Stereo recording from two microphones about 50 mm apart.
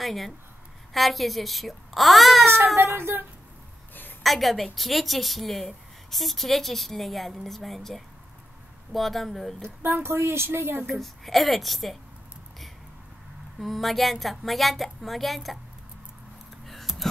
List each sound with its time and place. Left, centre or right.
0.0 s a woman's voice: centre
2.8 s speech: right
4.2 s a woman's voice: centre
9.8 s a woman's voice: right
10.9 s a woman's voice: centre
13.6 s a woman's voice: centre
16.6 s a sound: centre